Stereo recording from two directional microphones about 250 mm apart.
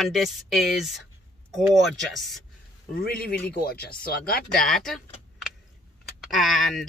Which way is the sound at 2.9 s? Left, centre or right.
Left.